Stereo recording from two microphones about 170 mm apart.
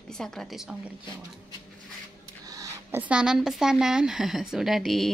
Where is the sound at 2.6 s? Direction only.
10° right (ahead or behind).